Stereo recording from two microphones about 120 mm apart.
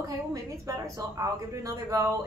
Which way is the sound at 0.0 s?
30° right (ahead or behind).